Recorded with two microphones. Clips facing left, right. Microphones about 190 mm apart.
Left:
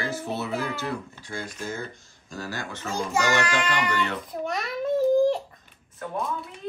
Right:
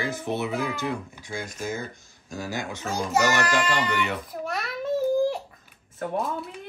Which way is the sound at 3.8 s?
10° right (ahead or behind).